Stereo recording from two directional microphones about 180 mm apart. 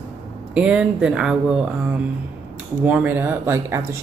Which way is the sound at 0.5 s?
5° right (ahead or behind).